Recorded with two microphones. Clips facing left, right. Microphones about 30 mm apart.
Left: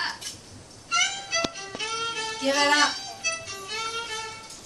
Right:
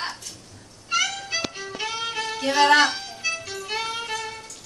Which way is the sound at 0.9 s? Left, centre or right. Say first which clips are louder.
Right 1 dB; centre.